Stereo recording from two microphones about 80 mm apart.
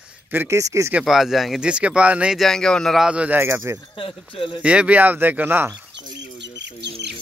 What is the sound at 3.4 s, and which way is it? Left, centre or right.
Speech, right.